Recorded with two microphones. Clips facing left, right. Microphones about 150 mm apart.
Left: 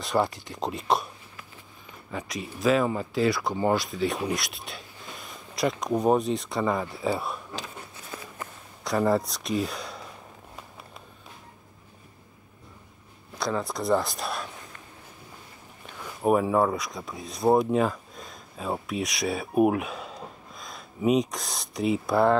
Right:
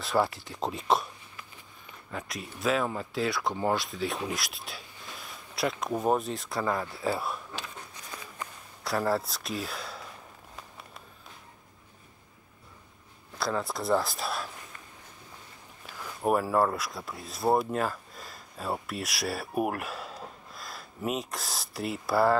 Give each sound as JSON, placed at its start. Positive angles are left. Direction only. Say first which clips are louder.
{"t": 0.0, "sound": "speech", "louder": "left 2 dB", "side_deg": 0}
{"t": 2.0, "sound": "speech", "louder": "left 4 dB", "side_deg": 0}
{"t": 8.8, "sound": "speech", "louder": "left 4 dB", "side_deg": 0}
{"t": 13.4, "sound": "speech", "louder": "left 2 dB", "side_deg": 0}
{"t": 16.0, "sound": "speech", "louder": "left 4 dB", "side_deg": 0}